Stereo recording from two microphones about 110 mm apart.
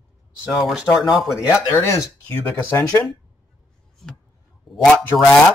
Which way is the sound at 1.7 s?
25° left (ahead or behind).